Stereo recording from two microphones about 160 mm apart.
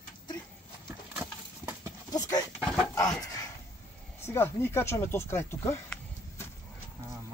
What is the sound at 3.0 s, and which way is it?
Speech, 20° left (ahead or behind).